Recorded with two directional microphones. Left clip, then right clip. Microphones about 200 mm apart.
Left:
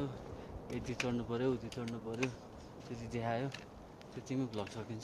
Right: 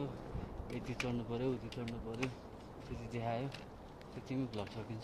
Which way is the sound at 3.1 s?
25° left (ahead or behind).